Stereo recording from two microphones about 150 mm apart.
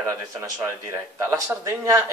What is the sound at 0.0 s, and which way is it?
Speech, 20° right (ahead or behind).